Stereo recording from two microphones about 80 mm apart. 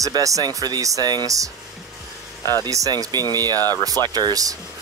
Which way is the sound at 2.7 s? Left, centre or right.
Right.